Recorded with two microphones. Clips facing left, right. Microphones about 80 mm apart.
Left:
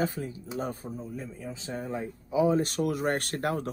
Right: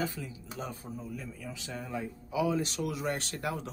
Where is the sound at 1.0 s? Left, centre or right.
Left.